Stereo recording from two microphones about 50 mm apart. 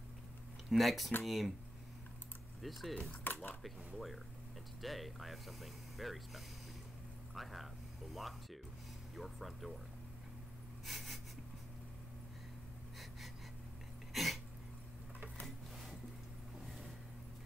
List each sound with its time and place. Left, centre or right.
0.7 s speech: centre
2.6 s speech: centre
3.3 s a sound: left
3.6 s speech: centre
10.9 s speech: centre
14.1 s throat clearing: centre